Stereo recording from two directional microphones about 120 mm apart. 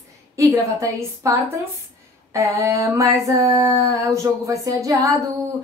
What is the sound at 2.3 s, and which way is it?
Female singing, 25° right (ahead or behind).